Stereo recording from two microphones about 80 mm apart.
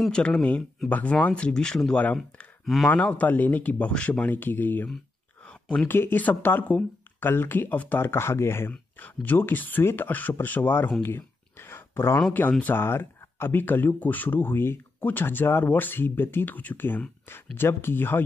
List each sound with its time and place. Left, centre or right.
0.1 s speech: centre
2.6 s speech: centre
2.9 s speech: centre
5.9 s speech: left
11.0 s a sound: left
12.3 s speech: centre